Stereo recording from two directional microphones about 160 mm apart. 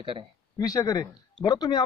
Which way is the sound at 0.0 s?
30° right (ahead or behind).